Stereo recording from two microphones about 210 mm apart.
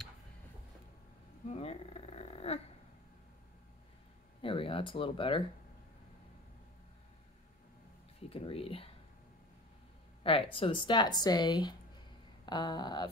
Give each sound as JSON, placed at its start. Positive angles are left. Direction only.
{"t": 1.5, "sound": "a sound", "side_deg": 30}
{"t": 4.4, "sound": "speech", "side_deg": 25}
{"t": 8.3, "sound": "speech", "side_deg": 25}
{"t": 10.2, "sound": "speech", "side_deg": 25}